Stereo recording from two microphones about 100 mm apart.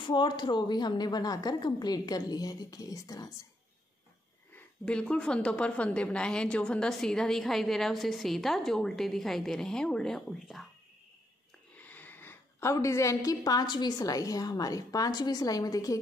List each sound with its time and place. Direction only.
0.0 s a woman's voice: 50° left (ahead or behind)
4.8 s a woman's voice: 10° left (ahead or behind)
11.8 s a woman's voice: 15° left (ahead or behind); by 16.0 s 35° left (ahead or behind)